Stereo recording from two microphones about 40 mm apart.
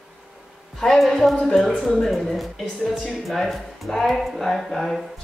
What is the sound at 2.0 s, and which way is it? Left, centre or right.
Speech, centre.